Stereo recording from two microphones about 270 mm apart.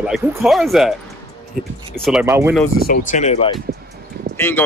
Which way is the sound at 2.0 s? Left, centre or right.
Centre.